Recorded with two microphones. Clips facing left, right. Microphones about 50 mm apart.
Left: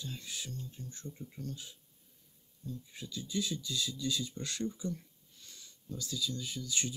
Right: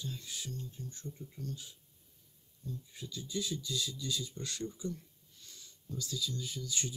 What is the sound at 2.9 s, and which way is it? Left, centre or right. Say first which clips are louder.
Speech: left 3 dB; left.